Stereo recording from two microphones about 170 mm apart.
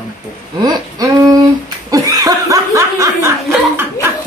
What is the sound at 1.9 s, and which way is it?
Snicker, 20° right (ahead or behind).